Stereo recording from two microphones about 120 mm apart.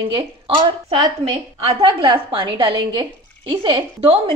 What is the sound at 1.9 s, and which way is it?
A woman's voice, 40° right (ahead or behind).